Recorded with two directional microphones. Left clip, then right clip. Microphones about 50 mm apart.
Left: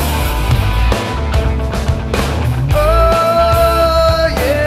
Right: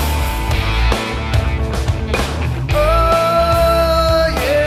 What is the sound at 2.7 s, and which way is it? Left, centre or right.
Music, right.